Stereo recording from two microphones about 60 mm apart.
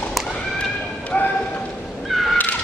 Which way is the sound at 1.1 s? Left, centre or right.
Left.